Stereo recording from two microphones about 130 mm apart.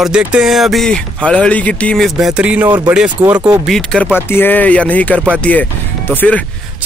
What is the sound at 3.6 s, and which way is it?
Speech, 5° left (ahead or behind).